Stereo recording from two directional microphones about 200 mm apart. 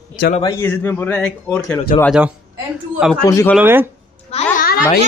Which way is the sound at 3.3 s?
15° left (ahead or behind).